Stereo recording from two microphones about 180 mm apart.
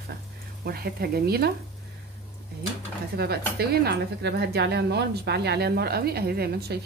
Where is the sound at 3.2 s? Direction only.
60° right (ahead or behind).